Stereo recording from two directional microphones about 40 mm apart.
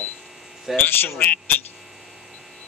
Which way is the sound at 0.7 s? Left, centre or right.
Centre.